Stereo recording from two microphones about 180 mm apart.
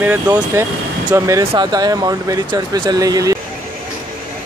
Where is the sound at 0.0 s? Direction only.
10° right (ahead or behind).